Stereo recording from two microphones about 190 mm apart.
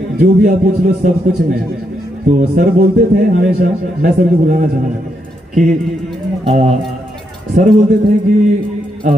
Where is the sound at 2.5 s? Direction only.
45° right (ahead or behind).